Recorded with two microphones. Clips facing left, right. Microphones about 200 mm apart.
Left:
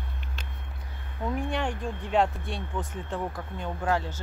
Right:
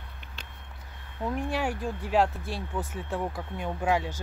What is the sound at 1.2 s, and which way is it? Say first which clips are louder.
Speech: even; 5° right (ahead or behind).